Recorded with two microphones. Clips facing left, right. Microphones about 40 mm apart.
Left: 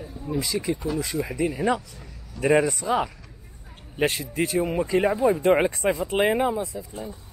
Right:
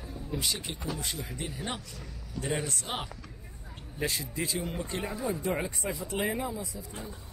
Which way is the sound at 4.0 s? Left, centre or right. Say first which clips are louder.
Left 9 dB; left.